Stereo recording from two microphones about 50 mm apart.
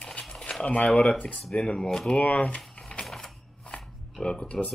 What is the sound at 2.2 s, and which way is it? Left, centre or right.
Speech, left.